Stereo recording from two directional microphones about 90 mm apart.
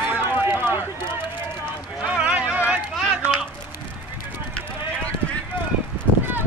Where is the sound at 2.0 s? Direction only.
15° right (ahead or behind).